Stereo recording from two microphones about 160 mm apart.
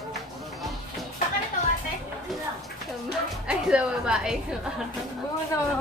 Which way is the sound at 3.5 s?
5° right (ahead or behind).